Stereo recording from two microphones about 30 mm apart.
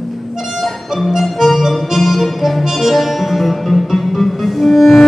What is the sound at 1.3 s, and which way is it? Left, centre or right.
Music, centre.